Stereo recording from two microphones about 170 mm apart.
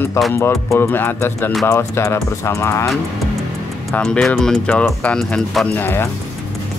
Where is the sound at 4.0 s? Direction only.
5° left (ahead or behind).